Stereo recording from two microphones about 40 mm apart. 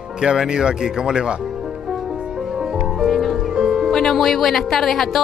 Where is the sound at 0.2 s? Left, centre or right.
Centre.